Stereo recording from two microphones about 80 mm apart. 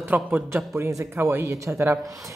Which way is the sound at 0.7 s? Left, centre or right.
Right.